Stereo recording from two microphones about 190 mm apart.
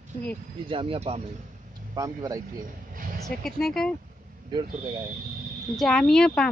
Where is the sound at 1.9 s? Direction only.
20° right (ahead or behind).